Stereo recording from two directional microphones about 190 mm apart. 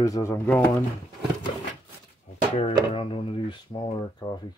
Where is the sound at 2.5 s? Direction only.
30° left (ahead or behind).